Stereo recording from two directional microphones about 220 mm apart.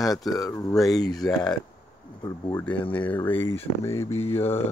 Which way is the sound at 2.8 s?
25° left (ahead or behind).